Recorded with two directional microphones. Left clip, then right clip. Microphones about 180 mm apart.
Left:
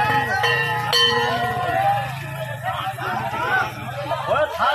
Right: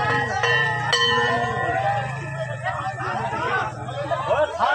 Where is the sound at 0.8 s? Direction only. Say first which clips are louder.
Left 6 dB; 20° right (ahead or behind).